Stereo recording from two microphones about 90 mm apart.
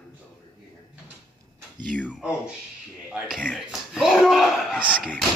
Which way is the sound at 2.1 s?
5° right (ahead or behind).